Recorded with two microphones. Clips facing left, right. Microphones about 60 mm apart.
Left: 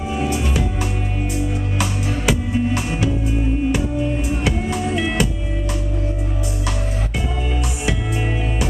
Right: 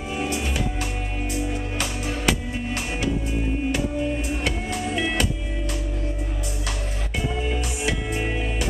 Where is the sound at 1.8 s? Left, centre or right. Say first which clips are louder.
Left 4 dB; centre.